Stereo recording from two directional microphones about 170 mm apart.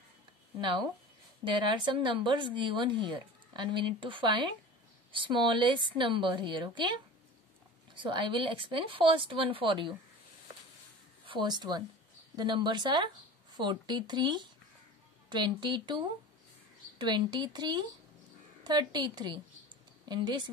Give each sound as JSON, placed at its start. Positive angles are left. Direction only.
{"t": 0.6, "sound": "speech", "side_deg": -30}
{"t": 7.9, "sound": "speech", "side_deg": -30}
{"t": 11.2, "sound": "speech", "side_deg": -25}